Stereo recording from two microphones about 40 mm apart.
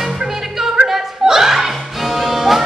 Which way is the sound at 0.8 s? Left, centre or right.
Centre.